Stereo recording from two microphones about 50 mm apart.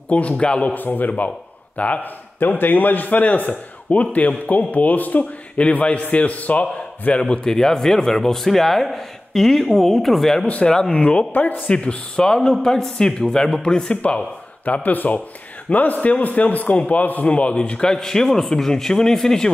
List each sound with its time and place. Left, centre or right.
0.1 s a man's voice: left
0.7 s a man's voice: left
2.4 s a man's voice: left; by 10.4 s centre
10.6 s speech: centre
11.3 s a man's voice: left
11.7 s speech: left
14.6 s a man's voice: left; by 19.5 s centre